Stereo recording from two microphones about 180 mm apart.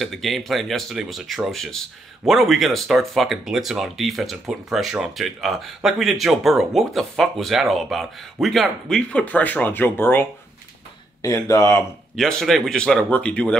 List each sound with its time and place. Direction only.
0.0 s speech: centre (ahead or behind)
11.2 s speech: 20° left (ahead or behind)
12.2 s speech: centre (ahead or behind)